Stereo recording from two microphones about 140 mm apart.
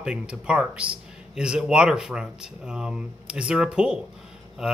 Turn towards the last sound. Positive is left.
turn(degrees=-5)  # may be behind; listen again after turning